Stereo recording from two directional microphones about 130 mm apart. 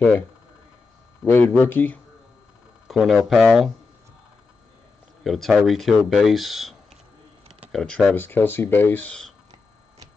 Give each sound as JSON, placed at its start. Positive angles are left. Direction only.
{"t": 1.2, "sound": "speech", "side_deg": 15}
{"t": 2.9, "sound": "speech", "side_deg": 0}
{"t": 5.2, "sound": "speech", "side_deg": 0}
{"t": 7.7, "sound": "speech", "side_deg": 5}